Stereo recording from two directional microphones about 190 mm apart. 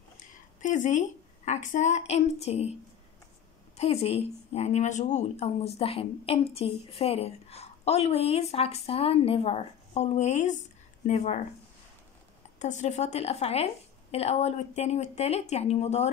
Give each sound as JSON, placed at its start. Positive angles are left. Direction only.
{"t": 0.2, "sound": "a woman's voice", "side_deg": 40}
{"t": 3.7, "sound": "a woman's voice", "side_deg": 35}
{"t": 12.5, "sound": "a woman's voice", "side_deg": 40}